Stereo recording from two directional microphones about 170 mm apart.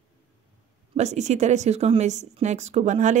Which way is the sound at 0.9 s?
40° right (ahead or behind).